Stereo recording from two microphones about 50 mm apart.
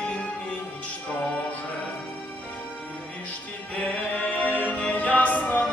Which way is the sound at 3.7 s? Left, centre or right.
Left.